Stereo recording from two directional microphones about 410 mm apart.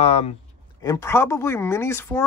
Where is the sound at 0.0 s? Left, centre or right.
Centre.